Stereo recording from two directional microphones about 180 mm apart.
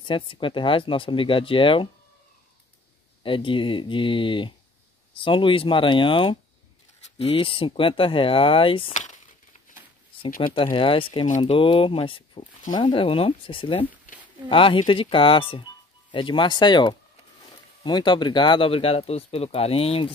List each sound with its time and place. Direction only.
0.0 s speech: 30° left (ahead or behind)
3.3 s speech: 30° left (ahead or behind)
10.4 s speech: 30° left (ahead or behind)